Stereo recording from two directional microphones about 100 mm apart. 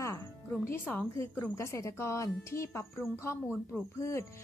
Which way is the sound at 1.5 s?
30° left (ahead or behind).